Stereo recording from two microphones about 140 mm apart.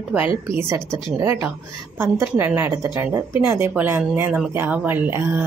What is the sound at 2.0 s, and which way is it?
Speech, 15° right (ahead or behind).